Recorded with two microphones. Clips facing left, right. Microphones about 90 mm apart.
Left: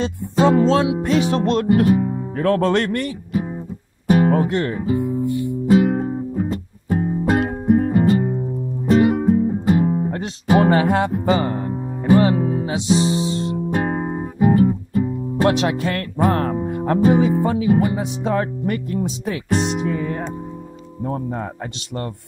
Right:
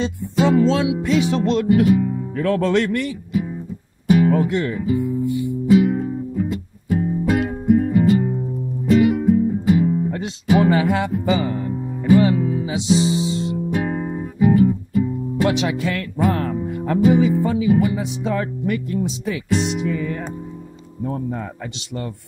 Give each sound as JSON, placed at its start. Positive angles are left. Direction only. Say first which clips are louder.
{"t": 0.4, "sound": "music", "louder": "left 1 dB", "side_deg": 45}
{"t": 1.0, "sound": "speech", "louder": "even", "side_deg": 45}
{"t": 4.1, "sound": "music", "louder": "even", "side_deg": 45}
{"t": 21.0, "sound": "speech", "louder": "left 1 dB", "side_deg": 30}
{"t": 21.7, "sound": "music", "louder": "left 1 dB", "side_deg": 45}